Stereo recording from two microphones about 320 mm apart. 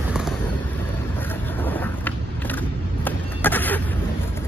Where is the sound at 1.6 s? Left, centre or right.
Centre.